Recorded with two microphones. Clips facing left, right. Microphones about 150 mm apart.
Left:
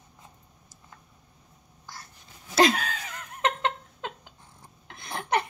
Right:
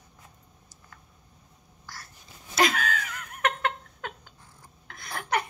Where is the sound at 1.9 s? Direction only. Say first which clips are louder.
Left 1 dB; 20° left (ahead or behind).